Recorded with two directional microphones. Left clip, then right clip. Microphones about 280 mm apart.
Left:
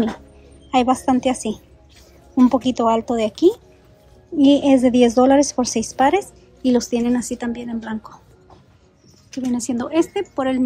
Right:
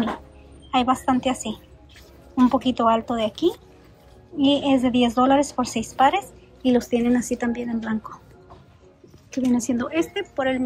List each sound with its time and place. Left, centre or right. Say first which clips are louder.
0.7 s a woman's voice: left 3 dB; centre
9.3 s a woman's voice: right 1 dB; centre